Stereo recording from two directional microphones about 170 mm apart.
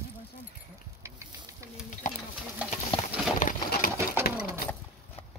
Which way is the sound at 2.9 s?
30° left (ahead or behind).